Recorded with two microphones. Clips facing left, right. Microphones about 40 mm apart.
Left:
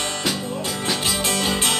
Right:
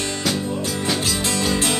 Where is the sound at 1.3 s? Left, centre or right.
Left.